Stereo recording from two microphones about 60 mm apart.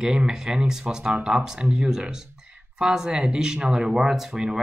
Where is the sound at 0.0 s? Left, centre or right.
Centre.